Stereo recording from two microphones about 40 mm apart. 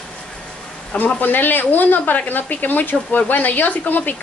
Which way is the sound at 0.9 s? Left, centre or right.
Left.